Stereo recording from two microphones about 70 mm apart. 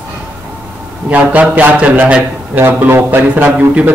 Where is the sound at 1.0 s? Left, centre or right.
Centre.